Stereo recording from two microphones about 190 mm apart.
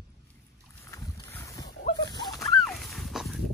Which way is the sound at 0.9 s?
15° left (ahead or behind).